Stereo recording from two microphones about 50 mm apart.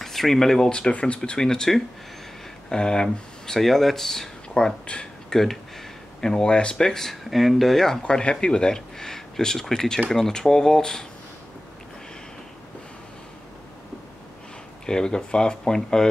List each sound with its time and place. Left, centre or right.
0.0 s speech: centre
0.7 s speech: centre
1.4 s speech: centre
8.0 s speech: centre
14.9 s speech: centre